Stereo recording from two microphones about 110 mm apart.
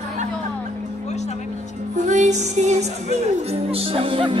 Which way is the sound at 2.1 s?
90° right.